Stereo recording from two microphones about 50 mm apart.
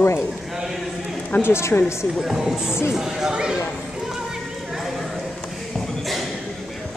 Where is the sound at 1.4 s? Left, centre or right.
Left.